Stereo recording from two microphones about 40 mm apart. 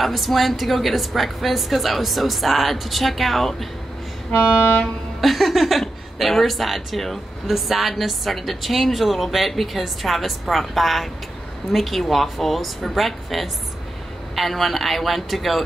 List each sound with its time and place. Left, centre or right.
0.0 s a woman's voice: centre
4.4 s train: left
5.2 s a woman's voice: centre